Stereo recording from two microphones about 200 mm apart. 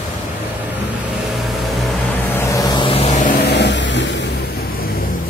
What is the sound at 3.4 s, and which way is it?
Vehicle, 60° left (ahead or behind).